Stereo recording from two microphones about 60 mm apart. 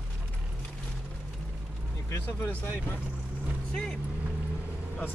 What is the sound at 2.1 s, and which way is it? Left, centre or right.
Speech, left.